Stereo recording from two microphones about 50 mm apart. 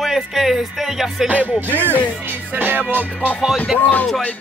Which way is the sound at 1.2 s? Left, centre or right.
Right.